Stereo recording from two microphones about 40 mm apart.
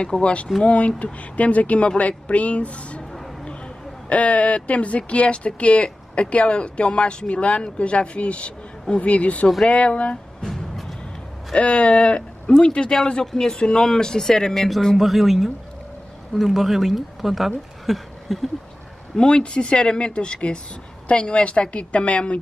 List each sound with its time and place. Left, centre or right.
0.2 s speech: left
10.4 s music: centre
11.5 s speech: left; by 15.0 s centre
15.0 s speech: centre
17.8 s a sound: centre
19.1 s speech: left